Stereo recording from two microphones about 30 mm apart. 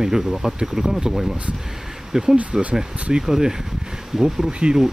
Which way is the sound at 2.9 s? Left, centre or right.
Right.